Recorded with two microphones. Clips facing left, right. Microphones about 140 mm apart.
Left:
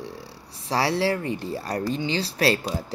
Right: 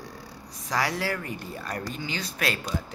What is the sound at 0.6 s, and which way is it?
Speech, 30° left (ahead or behind).